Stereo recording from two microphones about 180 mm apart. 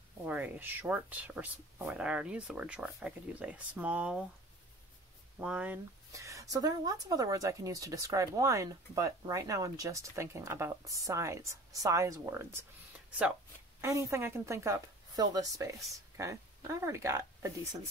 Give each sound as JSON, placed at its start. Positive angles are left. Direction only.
{"t": 0.3, "sound": "speech", "side_deg": -10}
{"t": 5.4, "sound": "speech", "side_deg": -5}
{"t": 13.7, "sound": "speech", "side_deg": -15}